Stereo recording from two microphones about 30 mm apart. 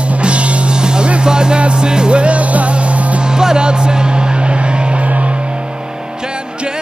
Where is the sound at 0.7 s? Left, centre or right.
Right.